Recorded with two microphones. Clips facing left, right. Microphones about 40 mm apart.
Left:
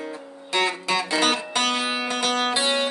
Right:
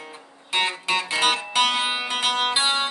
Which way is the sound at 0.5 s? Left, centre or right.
Right.